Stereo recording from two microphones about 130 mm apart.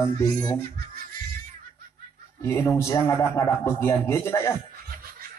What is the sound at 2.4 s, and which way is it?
A man's voice, 20° left (ahead or behind).